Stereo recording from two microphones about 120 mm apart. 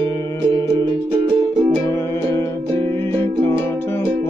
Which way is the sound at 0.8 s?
45° right (ahead or behind).